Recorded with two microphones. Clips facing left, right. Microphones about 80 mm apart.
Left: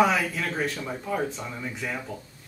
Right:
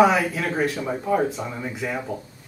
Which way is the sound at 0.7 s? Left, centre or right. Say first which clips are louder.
Right 7 dB; centre.